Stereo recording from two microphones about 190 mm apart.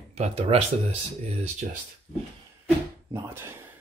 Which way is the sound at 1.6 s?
50° right (ahead or behind).